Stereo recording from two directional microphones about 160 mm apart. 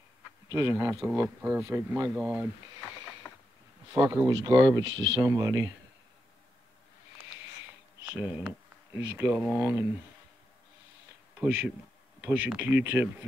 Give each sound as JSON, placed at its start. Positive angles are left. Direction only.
{"t": 0.5, "sound": "speech", "side_deg": -20}
{"t": 4.0, "sound": "speech", "side_deg": -10}
{"t": 4.3, "sound": "speech", "side_deg": -25}
{"t": 8.0, "sound": "speech", "side_deg": -5}
{"t": 11.3, "sound": "speech", "side_deg": -10}